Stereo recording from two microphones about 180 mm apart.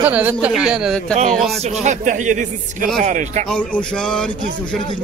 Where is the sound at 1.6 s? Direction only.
40° right (ahead or behind).